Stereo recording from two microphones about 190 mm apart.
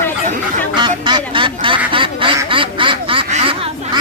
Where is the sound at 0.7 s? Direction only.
25° right (ahead or behind).